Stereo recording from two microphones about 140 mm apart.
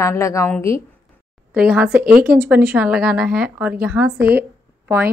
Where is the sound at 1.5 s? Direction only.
10° right (ahead or behind).